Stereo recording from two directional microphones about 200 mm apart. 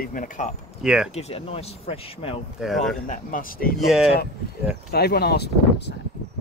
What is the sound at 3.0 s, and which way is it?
Speech, 40° left (ahead or behind).